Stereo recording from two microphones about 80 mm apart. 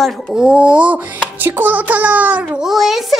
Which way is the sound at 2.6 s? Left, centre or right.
Centre.